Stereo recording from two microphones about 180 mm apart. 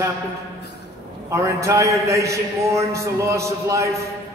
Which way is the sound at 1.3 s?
15° right (ahead or behind).